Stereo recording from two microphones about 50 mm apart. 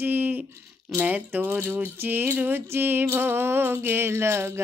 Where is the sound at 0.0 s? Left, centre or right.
Right.